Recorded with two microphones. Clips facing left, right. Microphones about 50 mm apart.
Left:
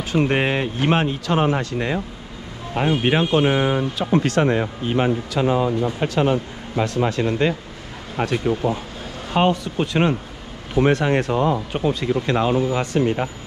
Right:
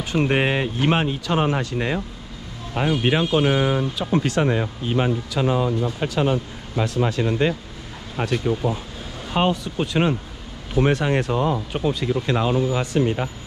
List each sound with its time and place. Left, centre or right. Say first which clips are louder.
0.3 s speech: even; left
2.8 s speech: left 1 dB; left
8.2 s speech: left 2 dB; left
9.3 s speech: left 2 dB; left
10.8 s speech: left 2 dB; left